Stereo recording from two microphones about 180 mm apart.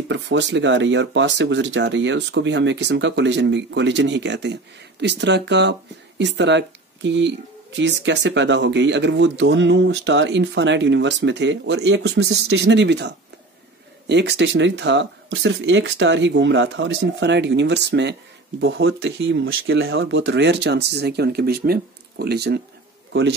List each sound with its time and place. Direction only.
0.1 s speech: 85° right
18.6 s speech: 90° right; by 22.6 s 65° right (ahead or behind)